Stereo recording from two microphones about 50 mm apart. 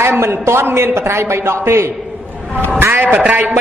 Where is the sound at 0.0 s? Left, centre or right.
Right.